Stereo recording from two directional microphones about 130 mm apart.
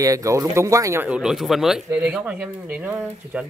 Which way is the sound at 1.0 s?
5° right (ahead or behind).